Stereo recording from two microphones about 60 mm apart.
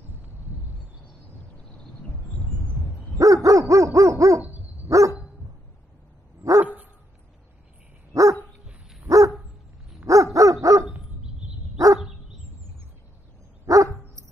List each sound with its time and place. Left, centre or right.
3.2 s dog: right
4.4 s dog: right
4.8 s dog: right
6.6 s dog: right
8.1 s dog: right
13.7 s dog: right